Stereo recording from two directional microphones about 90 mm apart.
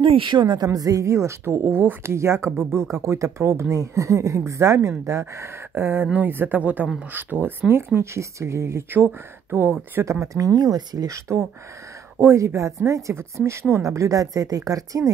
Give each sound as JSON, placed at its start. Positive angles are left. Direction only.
{"t": 0.0, "sound": "a woman's voice", "side_deg": -75}
{"t": 0.7, "sound": "a woman's voice", "side_deg": -40}
{"t": 10.2, "sound": "a woman's voice", "side_deg": -40}